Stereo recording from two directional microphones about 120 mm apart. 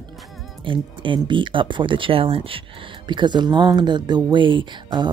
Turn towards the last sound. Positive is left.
turn(degrees=-40)  # may be behind; listen again after turning